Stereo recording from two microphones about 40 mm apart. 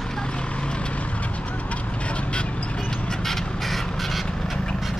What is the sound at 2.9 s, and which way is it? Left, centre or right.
Vehicle, centre.